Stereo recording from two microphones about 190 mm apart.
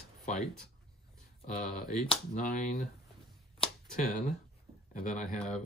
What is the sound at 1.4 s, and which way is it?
Speech, 40° left (ahead or behind).